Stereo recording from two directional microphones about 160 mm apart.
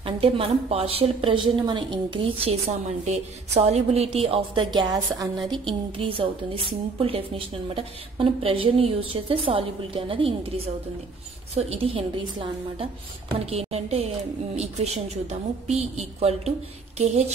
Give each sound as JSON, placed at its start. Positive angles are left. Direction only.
{"t": 0.0, "sound": "a woman's voice", "side_deg": -35}
{"t": 11.5, "sound": "a woman's voice", "side_deg": -40}
{"t": 17.0, "sound": "a sound", "side_deg": -45}